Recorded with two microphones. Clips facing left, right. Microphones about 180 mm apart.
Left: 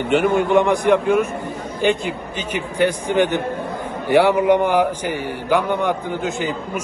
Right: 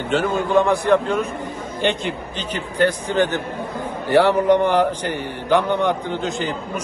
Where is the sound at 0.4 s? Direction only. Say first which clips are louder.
Left 1 dB; 20° left (ahead or behind).